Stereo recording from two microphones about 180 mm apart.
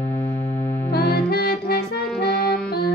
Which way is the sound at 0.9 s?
60° left (ahead or behind).